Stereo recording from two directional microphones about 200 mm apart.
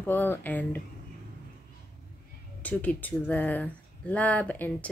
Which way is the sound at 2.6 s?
10° left (ahead or behind).